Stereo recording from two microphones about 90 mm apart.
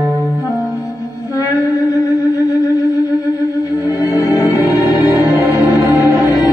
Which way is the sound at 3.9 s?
40° left (ahead or behind).